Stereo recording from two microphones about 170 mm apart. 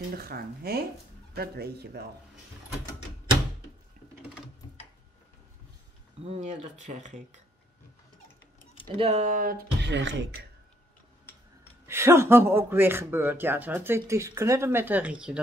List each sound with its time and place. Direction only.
0.1 s speech: 60° right (ahead or behind)
6.2 s speech: 40° right (ahead or behind)
8.9 s speech: 35° right (ahead or behind); by 10.3 s 90° right
11.9 s speech: 15° right (ahead or behind)